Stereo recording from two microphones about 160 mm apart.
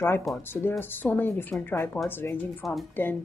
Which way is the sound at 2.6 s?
Centre (ahead or behind).